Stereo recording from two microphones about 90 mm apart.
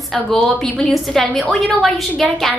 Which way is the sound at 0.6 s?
10° left (ahead or behind).